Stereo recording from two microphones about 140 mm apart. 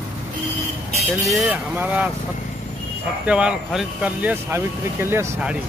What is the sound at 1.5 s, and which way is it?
Speech, 10° right (ahead or behind).